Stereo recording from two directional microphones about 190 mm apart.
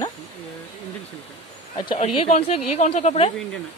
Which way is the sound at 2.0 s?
35° left (ahead or behind).